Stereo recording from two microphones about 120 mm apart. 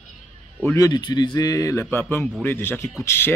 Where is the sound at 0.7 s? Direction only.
35° left (ahead or behind).